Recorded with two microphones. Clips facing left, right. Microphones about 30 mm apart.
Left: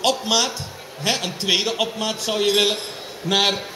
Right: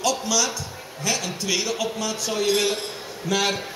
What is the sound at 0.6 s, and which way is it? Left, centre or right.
A man's voice, left.